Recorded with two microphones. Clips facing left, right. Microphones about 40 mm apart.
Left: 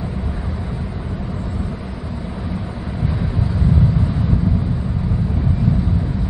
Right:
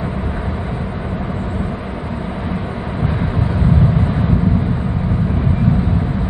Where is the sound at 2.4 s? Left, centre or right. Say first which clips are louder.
Right 4 dB; right.